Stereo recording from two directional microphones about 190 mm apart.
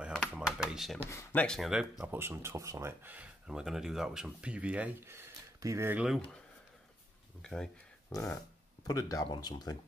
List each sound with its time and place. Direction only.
0.5 s a sound: centre (ahead or behind)
0.9 s speech: 10° left (ahead or behind)
2.1 s speech: 15° right (ahead or behind)
7.4 s speech: 5° left (ahead or behind)
8.1 s speech: 15° left (ahead or behind)